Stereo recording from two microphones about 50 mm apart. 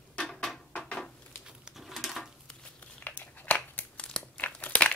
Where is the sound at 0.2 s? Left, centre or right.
Centre.